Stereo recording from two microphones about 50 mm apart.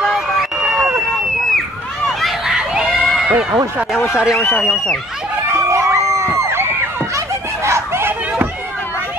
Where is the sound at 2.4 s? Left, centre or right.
Centre.